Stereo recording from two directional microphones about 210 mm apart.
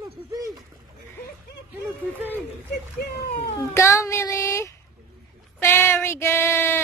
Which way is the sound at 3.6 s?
15° left (ahead or behind).